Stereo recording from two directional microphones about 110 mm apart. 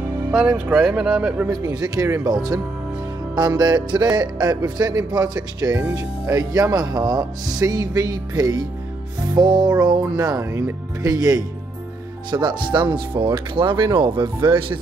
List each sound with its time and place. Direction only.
0.3 s speech: 10° right (ahead or behind)
1.5 s speech: 35° right (ahead or behind)
3.3 s speech: 40° right (ahead or behind)
5.8 s speech: 25° right (ahead or behind)
12.3 s speech: 45° right (ahead or behind)